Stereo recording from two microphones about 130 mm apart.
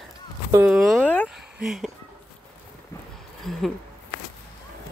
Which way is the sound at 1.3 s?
Centre (ahead or behind).